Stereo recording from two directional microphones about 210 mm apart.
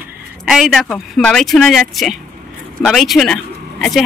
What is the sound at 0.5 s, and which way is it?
Speech, centre (ahead or behind).